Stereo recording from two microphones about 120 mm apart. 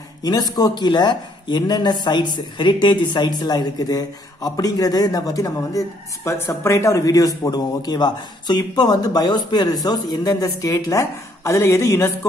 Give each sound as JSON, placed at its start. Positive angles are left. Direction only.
{"t": 0.2, "sound": "speech", "side_deg": 35}